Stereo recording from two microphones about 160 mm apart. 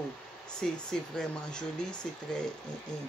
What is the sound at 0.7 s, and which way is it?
Speech, 5° left (ahead or behind).